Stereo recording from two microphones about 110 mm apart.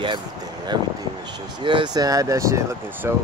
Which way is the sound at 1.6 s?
45° right (ahead or behind).